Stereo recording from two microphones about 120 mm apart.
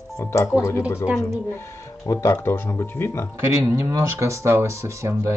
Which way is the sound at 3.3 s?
20° right (ahead or behind).